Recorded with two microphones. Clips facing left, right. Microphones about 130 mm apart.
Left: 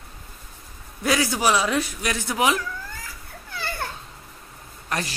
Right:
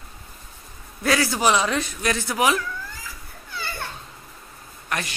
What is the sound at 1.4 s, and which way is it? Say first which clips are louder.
A man's voice: even; 5° left (ahead or behind).